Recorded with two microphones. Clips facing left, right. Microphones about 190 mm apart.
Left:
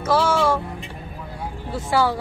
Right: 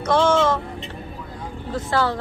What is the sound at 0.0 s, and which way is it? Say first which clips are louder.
Vehicle: right 2 dB; 5° left (ahead or behind).